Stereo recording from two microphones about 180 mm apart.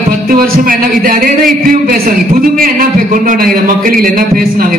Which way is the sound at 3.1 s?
45° right (ahead or behind).